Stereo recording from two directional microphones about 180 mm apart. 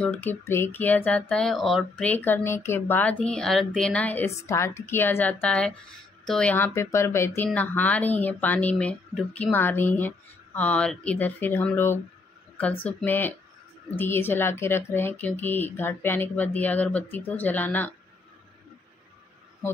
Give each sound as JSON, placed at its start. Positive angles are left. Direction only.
{"t": 0.0, "sound": "speech", "side_deg": 10}